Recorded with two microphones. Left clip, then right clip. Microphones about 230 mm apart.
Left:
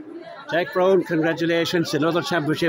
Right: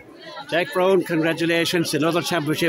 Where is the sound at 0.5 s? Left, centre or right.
Centre.